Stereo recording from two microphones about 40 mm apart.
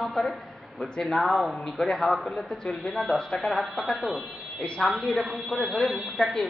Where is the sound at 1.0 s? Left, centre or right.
Centre.